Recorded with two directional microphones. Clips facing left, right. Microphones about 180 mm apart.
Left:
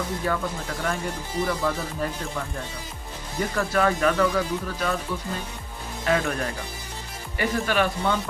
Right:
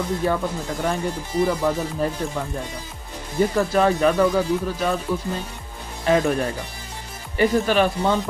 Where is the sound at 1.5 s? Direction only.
25° right (ahead or behind).